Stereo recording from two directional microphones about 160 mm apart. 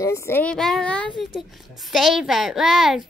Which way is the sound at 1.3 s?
Centre (ahead or behind).